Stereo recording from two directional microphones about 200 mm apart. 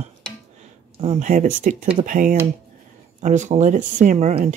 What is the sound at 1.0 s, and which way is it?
Speech, 35° right (ahead or behind).